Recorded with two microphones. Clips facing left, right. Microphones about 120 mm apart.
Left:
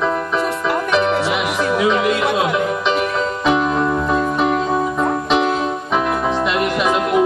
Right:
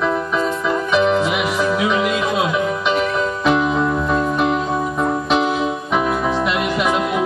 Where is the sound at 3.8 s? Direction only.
10° left (ahead or behind).